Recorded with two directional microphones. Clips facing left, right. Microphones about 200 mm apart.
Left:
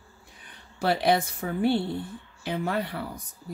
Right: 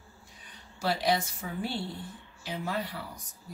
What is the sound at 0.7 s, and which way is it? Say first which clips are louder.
Speech: left 5 dB; 60° left (ahead or behind).